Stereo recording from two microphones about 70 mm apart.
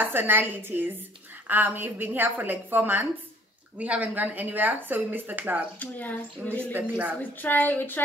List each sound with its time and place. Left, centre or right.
0.0 s a woman's voice: right
5.8 s speech: left